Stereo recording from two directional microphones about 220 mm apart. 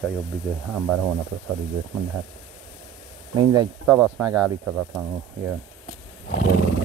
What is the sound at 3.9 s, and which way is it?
Speech, 5° right (ahead or behind).